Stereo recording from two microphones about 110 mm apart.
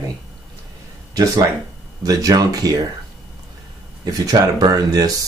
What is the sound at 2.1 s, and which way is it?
Speech, 35° right (ahead or behind).